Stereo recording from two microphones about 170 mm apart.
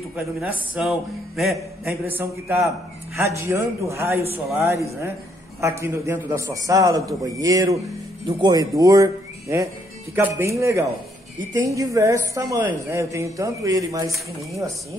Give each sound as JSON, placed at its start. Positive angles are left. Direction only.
{"t": 0.1, "sound": "a man's voice", "side_deg": -5}
{"t": 2.0, "sound": "a woman's voice", "side_deg": -10}